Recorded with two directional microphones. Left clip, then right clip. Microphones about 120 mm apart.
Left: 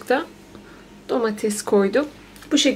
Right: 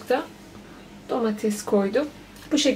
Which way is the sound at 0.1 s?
40° left (ahead or behind).